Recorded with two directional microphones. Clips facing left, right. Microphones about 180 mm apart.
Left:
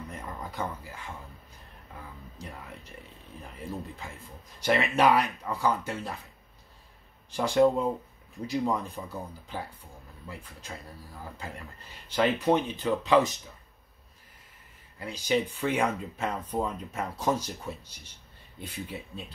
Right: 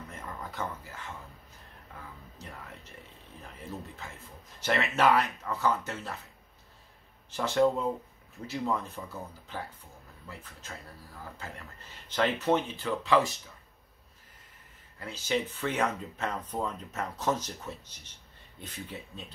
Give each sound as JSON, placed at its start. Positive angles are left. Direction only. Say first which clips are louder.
{"t": 0.1, "sound": "a sound", "louder": "left 2 dB", "side_deg": 15}
{"t": 2.4, "sound": "speech", "louder": "left 4 dB", "side_deg": 10}
{"t": 4.6, "sound": "speech", "louder": "left 3 dB", "side_deg": 15}
{"t": 7.2, "sound": "speech", "louder": "left 3 dB", "side_deg": 15}
{"t": 12.1, "sound": "speech", "louder": "left 2 dB", "side_deg": 10}
{"t": 15.0, "sound": "speech", "louder": "left 3 dB", "side_deg": 15}